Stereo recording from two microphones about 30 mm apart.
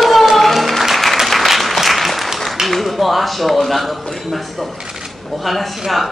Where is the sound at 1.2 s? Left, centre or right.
Centre.